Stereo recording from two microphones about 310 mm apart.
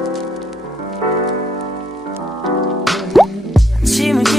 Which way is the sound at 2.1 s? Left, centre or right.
Centre.